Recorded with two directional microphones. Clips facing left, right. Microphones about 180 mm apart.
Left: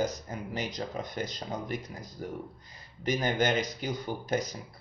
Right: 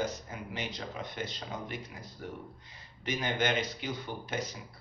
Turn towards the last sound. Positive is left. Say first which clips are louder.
# left 5 dB
turn(degrees=40)  # may be behind; listen again after turning